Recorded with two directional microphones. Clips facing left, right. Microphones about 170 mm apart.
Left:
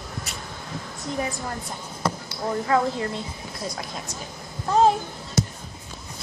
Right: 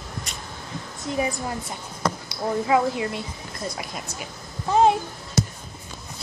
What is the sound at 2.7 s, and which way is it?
Speech, 10° right (ahead or behind).